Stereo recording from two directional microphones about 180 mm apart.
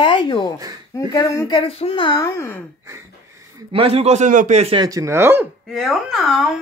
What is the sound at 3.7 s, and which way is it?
A man's voice, 35° right (ahead or behind).